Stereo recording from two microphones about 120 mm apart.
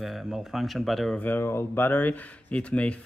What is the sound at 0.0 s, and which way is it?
Speech, 5° right (ahead or behind).